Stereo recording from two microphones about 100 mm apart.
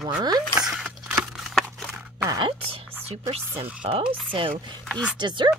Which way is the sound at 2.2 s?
45° right (ahead or behind).